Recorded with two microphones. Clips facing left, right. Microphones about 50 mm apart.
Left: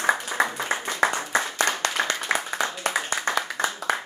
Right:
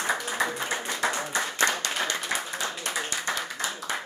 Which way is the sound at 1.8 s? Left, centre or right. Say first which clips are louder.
Left 4 dB; left.